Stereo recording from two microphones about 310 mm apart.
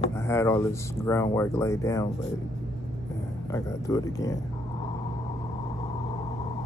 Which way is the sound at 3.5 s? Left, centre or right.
Centre.